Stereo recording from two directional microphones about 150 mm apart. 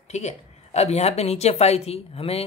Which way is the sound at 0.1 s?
50° left (ahead or behind).